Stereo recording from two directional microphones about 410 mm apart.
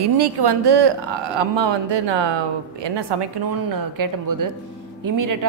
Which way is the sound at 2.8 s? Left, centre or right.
Right.